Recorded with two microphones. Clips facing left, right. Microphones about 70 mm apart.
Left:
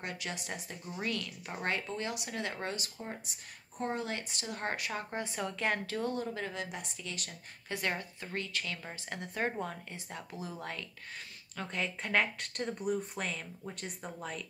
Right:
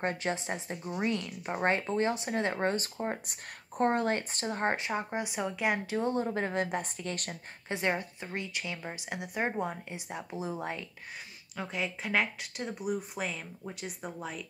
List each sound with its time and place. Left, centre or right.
0.0 s speech: right
7.6 s speech: right
11.5 s speech: centre